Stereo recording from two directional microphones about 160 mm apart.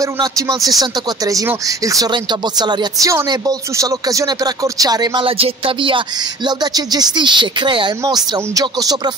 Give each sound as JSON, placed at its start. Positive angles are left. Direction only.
{"t": 0.0, "sound": "a woman's voice", "side_deg": -20}
{"t": 2.6, "sound": "a woman's voice", "side_deg": -25}